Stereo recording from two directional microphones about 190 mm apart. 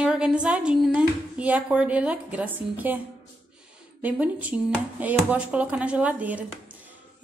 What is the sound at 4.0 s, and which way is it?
Speech, 10° right (ahead or behind).